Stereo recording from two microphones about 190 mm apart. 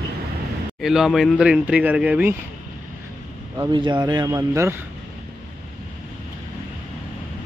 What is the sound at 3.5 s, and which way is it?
Speech, 20° right (ahead or behind).